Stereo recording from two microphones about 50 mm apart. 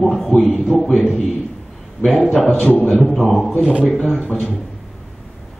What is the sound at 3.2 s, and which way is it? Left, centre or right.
Speech, centre.